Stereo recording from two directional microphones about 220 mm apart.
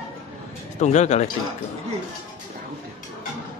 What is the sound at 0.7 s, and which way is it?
Speech, 30° left (ahead or behind).